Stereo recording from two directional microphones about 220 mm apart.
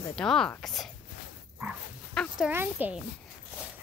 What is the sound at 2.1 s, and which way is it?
Dog, 5° left (ahead or behind).